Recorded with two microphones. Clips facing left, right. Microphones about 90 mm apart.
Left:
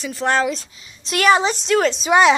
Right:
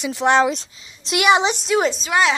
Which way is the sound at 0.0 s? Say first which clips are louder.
Right 3 dB; 15° right (ahead or behind).